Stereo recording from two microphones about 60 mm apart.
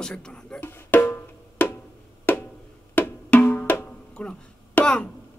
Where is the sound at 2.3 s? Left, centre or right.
Left.